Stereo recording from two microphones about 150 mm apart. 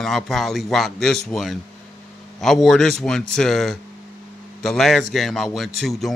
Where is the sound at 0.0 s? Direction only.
Centre (ahead or behind).